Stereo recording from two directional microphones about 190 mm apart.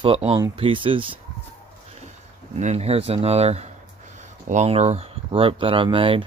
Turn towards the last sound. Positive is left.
turn(degrees=-30)  # may be behind; listen again after turning